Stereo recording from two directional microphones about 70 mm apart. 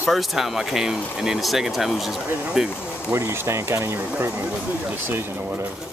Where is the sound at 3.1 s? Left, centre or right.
Right.